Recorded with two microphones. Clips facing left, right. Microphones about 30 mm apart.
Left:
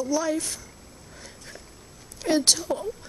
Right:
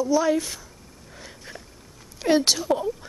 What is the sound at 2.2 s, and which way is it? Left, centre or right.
Speech, centre.